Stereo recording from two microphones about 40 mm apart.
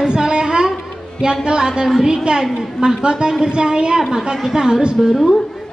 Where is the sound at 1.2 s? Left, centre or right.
Right.